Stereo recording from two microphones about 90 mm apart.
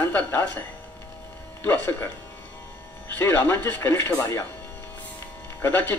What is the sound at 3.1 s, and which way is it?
Speech, 25° left (ahead or behind).